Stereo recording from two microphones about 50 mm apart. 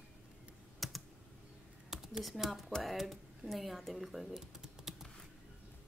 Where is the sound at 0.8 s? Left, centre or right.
Centre.